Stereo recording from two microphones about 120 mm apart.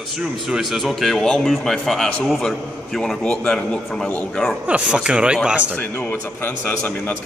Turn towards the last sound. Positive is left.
turn(degrees=15)  # may be behind; listen again after turning